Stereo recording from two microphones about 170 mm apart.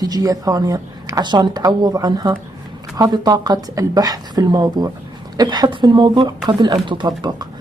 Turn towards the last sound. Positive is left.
turn(degrees=-25)  # may be behind; listen again after turning